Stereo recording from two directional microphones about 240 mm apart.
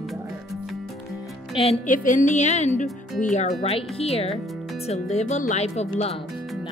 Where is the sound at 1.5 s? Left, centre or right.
Left.